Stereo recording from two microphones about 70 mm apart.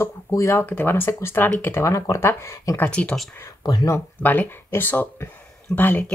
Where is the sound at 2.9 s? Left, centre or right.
Centre.